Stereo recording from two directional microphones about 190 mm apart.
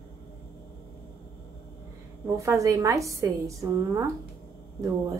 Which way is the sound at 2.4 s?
15° right (ahead or behind).